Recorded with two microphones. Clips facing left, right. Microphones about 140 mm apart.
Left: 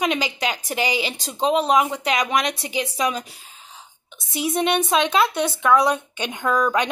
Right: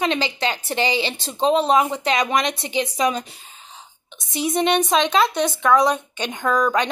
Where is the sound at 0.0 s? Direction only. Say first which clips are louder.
Right 1 dB; 10° left (ahead or behind).